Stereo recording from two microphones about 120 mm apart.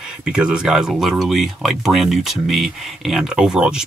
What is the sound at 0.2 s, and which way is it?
Speech, 5° right (ahead or behind).